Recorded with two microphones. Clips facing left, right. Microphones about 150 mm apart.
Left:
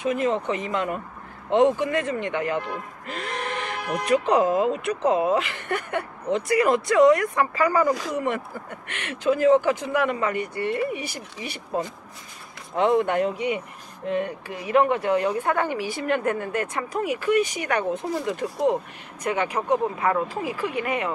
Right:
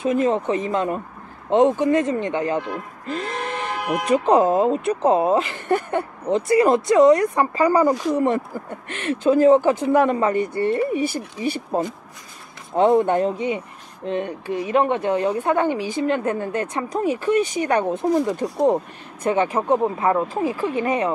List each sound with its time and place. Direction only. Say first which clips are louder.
0.0 s speech: right 4 dB; 30° right (ahead or behind)
3.1 s a sound: right 4 dB; 40° right (ahead or behind)
4.3 s speech: right 6 dB; 35° right (ahead or behind)